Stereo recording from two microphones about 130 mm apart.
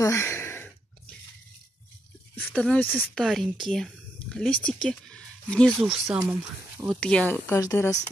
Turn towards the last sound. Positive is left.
turn(degrees=25)  # may be behind; listen again after turning